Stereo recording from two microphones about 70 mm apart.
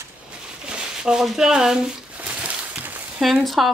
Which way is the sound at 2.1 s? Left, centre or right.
Centre.